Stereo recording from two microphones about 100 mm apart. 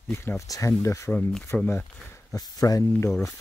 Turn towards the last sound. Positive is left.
turn(degrees=25)  # may be behind; listen again after turning